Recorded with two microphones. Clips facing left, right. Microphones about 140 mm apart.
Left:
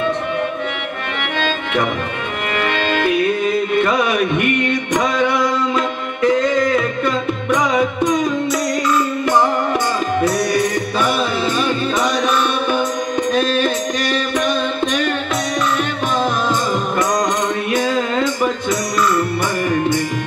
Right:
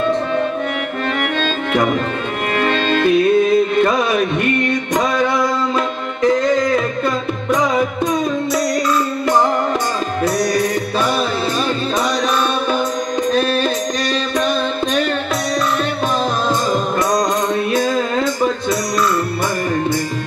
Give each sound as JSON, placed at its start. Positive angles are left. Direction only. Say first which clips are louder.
{"t": 5.8, "sound": "music", "louder": "even", "side_deg": -35}
{"t": 10.2, "sound": "music", "louder": "right 2 dB", "side_deg": -35}
{"t": 13.3, "sound": "music", "louder": "even", "side_deg": -35}
{"t": 17.6, "sound": "music", "louder": "right 1 dB", "side_deg": -35}